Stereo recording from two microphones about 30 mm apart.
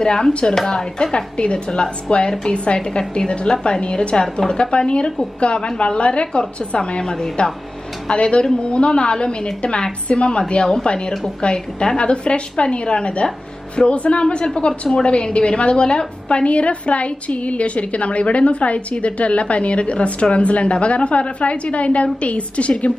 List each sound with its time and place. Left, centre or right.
0.0 s a woman's voice: left
7.0 s a woman's voice: left
8.1 s a woman's voice: left
10.6 s a woman's voice: left
16.4 s a woman's voice: left